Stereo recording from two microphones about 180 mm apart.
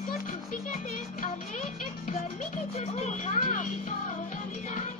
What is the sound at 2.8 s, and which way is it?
Children playing, 40° left (ahead or behind).